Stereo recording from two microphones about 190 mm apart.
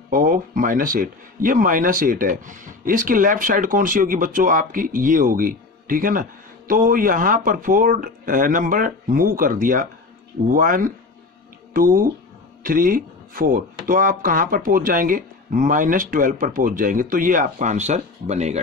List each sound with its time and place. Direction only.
0.1 s speech: 45° right (ahead or behind)